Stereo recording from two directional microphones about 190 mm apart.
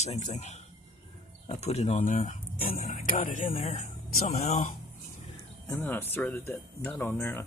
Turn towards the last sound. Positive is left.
turn(degrees=10)  # may be behind; listen again after turning